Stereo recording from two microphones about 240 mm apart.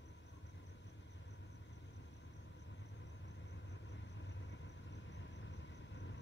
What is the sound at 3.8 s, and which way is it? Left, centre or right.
Vehicle, left.